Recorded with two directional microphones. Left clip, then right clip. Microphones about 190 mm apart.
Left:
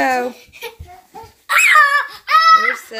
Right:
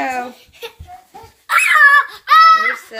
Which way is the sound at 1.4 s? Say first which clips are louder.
Left 1 dB; 15° left (ahead or behind).